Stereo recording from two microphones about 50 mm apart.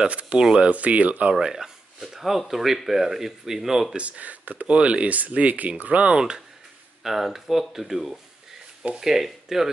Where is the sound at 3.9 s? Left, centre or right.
Right.